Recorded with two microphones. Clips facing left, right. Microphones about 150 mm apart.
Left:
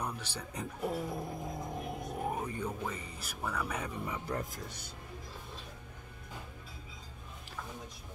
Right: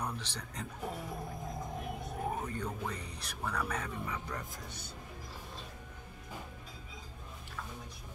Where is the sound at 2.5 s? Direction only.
5° left (ahead or behind).